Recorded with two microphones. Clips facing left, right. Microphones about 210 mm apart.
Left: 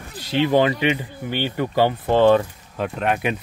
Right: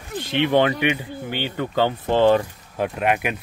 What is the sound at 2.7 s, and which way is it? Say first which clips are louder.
Speech: right 1 dB; 10° right (ahead or behind).